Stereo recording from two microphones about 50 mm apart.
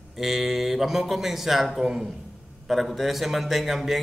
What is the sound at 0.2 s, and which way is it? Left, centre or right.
Speech, centre.